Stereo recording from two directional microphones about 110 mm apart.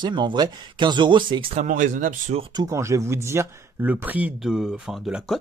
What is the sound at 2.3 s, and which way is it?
Speech, 75° right (ahead or behind).